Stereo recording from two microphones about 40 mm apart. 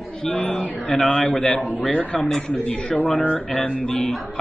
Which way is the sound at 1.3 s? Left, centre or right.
Left.